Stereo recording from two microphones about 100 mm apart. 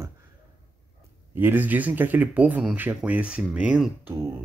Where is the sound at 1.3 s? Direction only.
20° right (ahead or behind).